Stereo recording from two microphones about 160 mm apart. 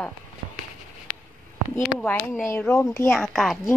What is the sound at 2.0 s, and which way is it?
Speech, 10° left (ahead or behind).